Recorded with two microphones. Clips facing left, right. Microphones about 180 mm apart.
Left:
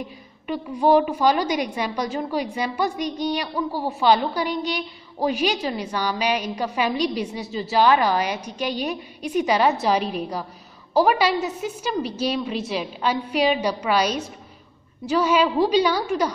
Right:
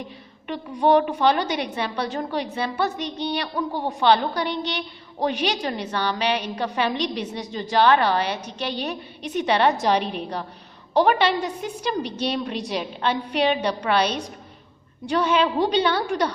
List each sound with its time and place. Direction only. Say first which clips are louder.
0.5 s a woman's voice: left 1 dB; 5° left (ahead or behind)